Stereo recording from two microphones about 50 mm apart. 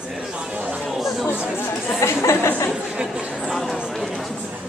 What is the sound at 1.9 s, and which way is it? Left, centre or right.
Chatter, left.